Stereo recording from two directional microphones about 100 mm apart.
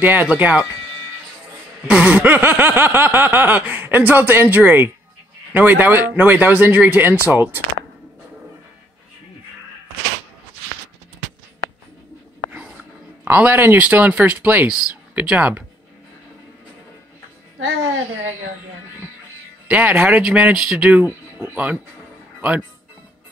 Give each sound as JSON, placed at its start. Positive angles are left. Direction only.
{"t": 0.0, "sound": "speech", "side_deg": -20}
{"t": 1.9, "sound": "speech", "side_deg": -10}
{"t": 12.4, "sound": "a sound", "side_deg": -15}
{"t": 13.2, "sound": "speech", "side_deg": -20}
{"t": 14.7, "sound": "speech", "side_deg": -5}
{"t": 15.1, "sound": "speech", "side_deg": -15}
{"t": 19.7, "sound": "speech", "side_deg": -15}